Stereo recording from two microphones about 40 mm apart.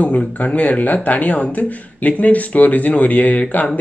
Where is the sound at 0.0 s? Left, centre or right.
Left.